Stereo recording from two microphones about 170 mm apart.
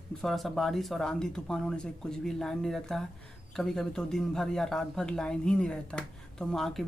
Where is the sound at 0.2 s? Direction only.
Centre (ahead or behind).